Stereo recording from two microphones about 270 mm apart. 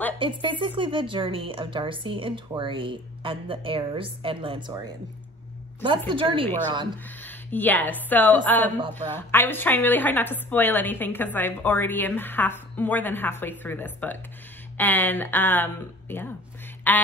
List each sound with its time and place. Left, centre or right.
0.2 s a woman's voice: centre
7.2 s a woman's voice: centre